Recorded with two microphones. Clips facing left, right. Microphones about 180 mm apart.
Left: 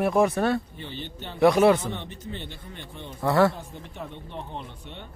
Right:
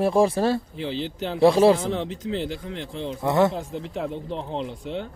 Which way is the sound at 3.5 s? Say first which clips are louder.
Right 10 dB; 90° right.